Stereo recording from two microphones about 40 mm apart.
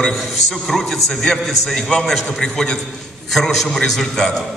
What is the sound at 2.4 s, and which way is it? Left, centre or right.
Speech, centre.